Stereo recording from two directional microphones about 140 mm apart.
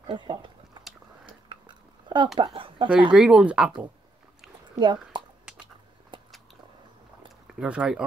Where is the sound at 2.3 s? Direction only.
35° right (ahead or behind).